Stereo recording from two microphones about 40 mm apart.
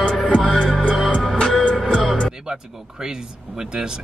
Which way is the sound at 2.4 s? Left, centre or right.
Centre.